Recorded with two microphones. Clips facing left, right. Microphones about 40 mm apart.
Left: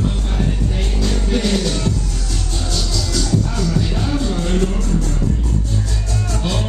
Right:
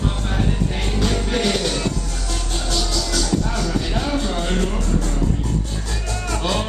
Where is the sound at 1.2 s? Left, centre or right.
Right.